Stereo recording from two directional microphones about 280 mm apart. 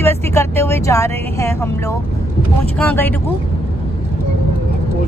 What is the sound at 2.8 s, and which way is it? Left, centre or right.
Speech, centre.